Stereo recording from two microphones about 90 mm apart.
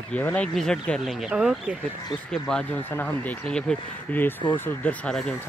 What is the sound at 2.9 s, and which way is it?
Speech, 20° left (ahead or behind).